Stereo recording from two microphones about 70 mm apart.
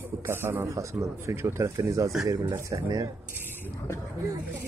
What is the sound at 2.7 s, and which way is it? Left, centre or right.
Speech, right.